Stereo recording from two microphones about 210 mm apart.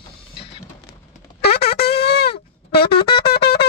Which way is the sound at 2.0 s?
50° left (ahead or behind).